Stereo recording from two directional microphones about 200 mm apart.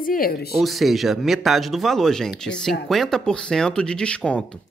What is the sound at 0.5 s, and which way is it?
Speech, centre (ahead or behind).